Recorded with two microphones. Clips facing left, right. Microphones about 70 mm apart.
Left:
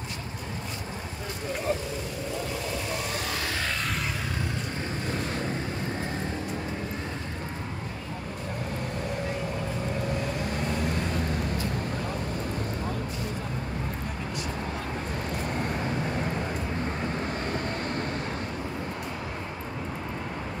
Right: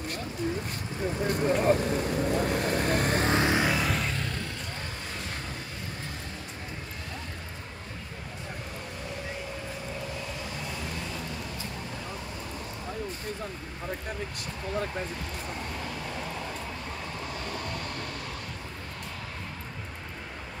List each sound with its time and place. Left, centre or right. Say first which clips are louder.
1.2 s vehicle: right 7 dB; right
3.3 s music: right 6 dB; right
3.7 s music: right 2 dB; centre